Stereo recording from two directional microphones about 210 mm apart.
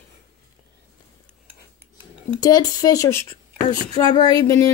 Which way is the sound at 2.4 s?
20° left (ahead or behind).